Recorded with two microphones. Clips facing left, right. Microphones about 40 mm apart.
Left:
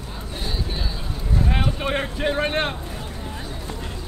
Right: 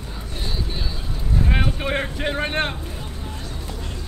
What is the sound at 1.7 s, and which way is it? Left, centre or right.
Speech, centre.